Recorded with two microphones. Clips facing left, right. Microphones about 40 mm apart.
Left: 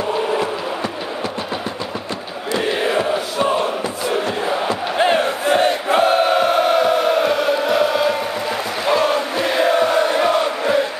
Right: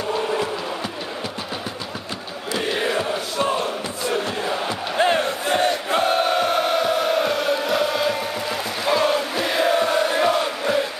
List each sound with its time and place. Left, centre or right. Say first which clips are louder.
2.9 s crowd: left 4 dB; left
5.2 s battle cry: left 5 dB; centre
5.6 s chant: left 4 dB; centre